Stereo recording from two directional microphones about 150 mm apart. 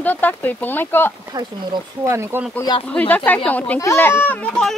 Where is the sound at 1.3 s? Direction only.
20° right (ahead or behind).